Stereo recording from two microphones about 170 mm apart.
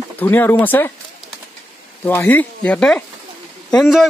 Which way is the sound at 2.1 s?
10° left (ahead or behind).